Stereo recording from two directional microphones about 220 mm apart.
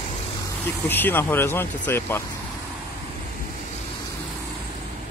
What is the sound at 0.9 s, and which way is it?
Speech, 10° left (ahead or behind).